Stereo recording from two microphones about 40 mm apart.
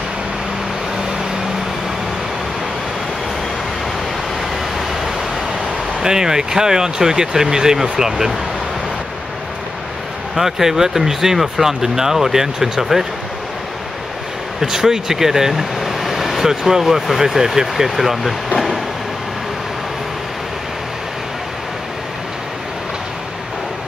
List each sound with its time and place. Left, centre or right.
6.0 s speech: centre
10.3 s speech: centre
14.6 s speech: centre